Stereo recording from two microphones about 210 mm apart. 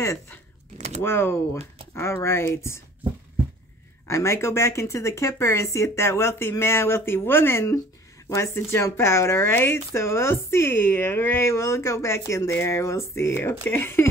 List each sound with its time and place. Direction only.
0.0 s speech: 15° left (ahead or behind)
0.7 s speech: 35° right (ahead or behind)
1.0 s speech: 10° left (ahead or behind)
4.1 s speech: 15° left (ahead or behind)